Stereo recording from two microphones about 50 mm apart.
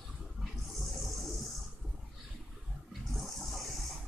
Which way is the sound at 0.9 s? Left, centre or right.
Centre.